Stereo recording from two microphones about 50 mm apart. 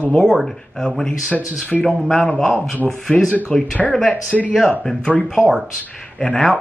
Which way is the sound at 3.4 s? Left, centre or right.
Centre.